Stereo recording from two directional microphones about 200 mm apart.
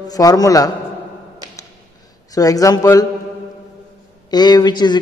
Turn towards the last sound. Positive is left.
turn(degrees=20)  # may be behind; listen again after turning